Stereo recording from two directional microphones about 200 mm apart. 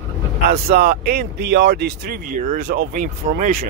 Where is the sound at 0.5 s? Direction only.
50° right (ahead or behind).